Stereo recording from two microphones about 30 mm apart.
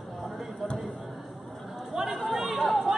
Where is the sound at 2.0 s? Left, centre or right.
Right.